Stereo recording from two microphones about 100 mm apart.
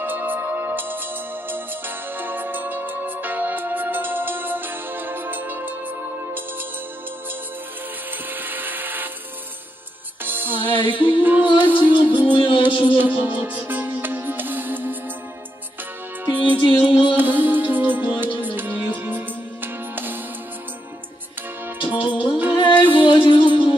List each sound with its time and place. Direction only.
0.0 s music: 20° right (ahead or behind)
2.1 s music: 20° right (ahead or behind)
8.4 s a sound: 20° right (ahead or behind)
10.2 s music: 20° right (ahead or behind)
10.8 s music: 55° left (ahead or behind)
11.2 s music: 20° right (ahead or behind)
12.3 s music: 60° left (ahead or behind)
12.9 s music: 15° right (ahead or behind)
16.3 s music: 15° right (ahead or behind)
16.6 s music: 55° left (ahead or behind)
17.2 s music: 20° right (ahead or behind)
22.0 s music: 55° left (ahead or behind)